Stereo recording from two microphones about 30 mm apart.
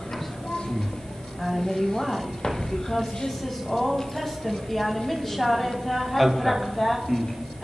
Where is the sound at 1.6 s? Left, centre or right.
Centre.